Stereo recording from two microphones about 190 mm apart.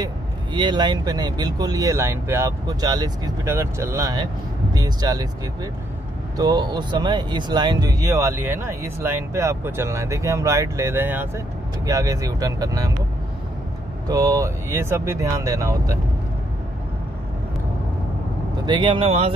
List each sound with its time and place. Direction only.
0.0 s speech: 25° right (ahead or behind)
14.0 s speech: 20° right (ahead or behind)
18.7 s speech: 25° right (ahead or behind)